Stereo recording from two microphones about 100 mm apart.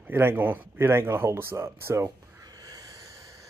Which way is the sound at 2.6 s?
40° right (ahead or behind).